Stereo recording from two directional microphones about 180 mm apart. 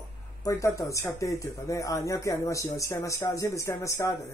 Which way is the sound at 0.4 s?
20° left (ahead or behind).